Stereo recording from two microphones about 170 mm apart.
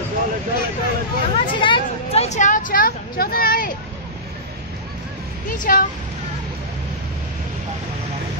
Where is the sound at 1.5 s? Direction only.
30° left (ahead or behind); by 3.7 s 60° left (ahead or behind).